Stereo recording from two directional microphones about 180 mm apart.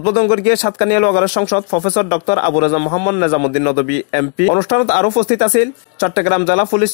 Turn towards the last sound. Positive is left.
turn(degrees=45)  # may be behind; listen again after turning